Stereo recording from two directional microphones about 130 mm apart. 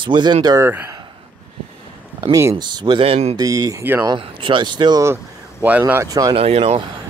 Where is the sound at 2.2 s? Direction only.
25° right (ahead or behind).